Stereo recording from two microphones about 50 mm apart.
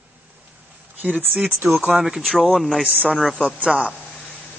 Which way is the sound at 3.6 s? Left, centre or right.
Centre.